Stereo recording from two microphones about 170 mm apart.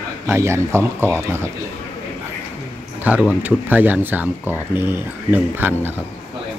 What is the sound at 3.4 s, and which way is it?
Speech, 10° right (ahead or behind).